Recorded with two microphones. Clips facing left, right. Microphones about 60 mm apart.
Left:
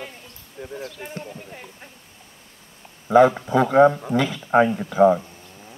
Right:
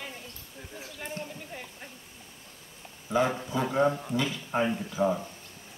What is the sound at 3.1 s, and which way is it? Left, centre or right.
Speech, left.